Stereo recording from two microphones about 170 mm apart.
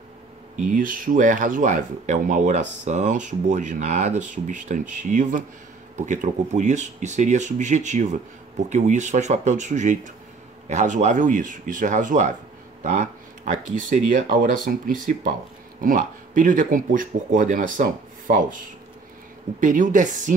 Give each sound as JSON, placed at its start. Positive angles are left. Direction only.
{"t": 0.7, "sound": "speech", "side_deg": -55}
{"t": 19.6, "sound": "speech", "side_deg": -50}